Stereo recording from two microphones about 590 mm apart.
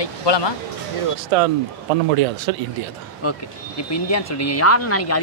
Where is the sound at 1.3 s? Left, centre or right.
Right.